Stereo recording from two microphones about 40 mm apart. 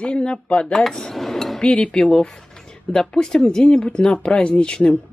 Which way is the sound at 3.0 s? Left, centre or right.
Centre.